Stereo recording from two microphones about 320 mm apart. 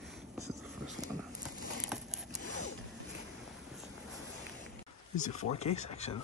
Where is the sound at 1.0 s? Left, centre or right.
Centre.